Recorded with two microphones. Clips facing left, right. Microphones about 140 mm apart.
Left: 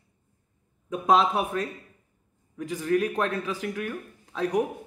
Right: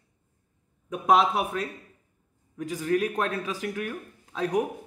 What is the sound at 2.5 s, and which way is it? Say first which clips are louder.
Speech: left 1 dB; 15° right (ahead or behind).